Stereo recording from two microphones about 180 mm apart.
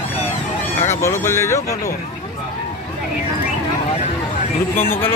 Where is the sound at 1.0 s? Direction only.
15° left (ahead or behind).